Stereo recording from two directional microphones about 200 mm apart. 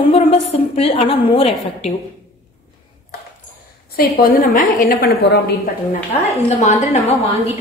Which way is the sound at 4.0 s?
50° left (ahead or behind).